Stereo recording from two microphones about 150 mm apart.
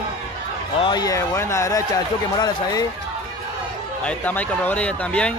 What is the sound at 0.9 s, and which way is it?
Speech, 25° left (ahead or behind).